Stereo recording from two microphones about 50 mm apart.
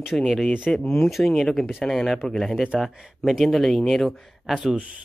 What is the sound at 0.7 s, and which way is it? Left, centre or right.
Speech, centre.